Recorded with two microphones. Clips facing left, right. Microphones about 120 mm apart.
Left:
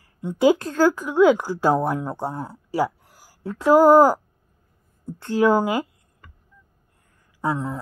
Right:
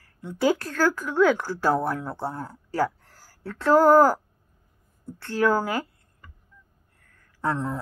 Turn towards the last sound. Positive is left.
turn(degrees=15)  # may be behind; listen again after turning